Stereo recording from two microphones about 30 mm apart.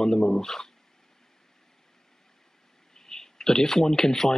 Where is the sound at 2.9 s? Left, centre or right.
Centre.